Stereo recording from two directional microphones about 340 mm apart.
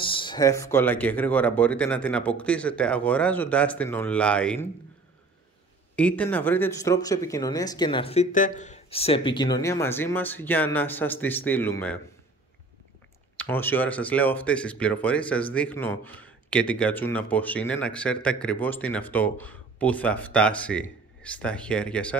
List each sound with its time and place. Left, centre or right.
0.0 s speech: centre
5.9 s speech: centre
13.4 s speech: centre